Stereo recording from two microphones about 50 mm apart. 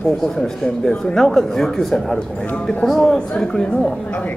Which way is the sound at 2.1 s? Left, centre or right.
Centre.